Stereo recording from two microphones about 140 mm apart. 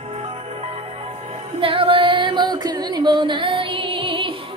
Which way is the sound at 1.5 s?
40° right (ahead or behind).